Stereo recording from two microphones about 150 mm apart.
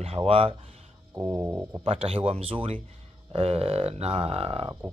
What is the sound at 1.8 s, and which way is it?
Speech, 40° right (ahead or behind).